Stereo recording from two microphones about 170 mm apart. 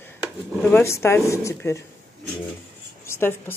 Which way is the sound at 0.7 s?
15° left (ahead or behind).